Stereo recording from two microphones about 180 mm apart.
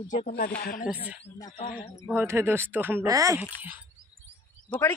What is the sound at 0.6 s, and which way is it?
Speech, 55° left (ahead or behind).